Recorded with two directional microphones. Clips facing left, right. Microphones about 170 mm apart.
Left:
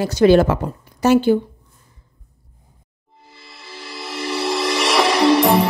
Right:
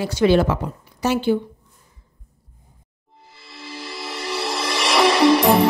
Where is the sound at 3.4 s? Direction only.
Centre (ahead or behind).